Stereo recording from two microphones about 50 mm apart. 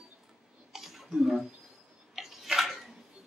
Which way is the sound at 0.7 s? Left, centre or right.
Centre.